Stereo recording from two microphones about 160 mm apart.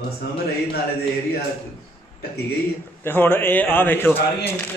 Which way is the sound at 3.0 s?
10° left (ahead or behind).